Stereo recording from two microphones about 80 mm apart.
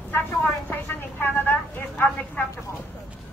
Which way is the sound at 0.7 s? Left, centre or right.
Left.